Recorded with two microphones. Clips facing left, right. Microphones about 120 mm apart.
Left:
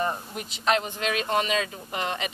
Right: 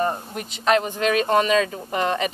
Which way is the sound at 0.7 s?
45° right (ahead or behind).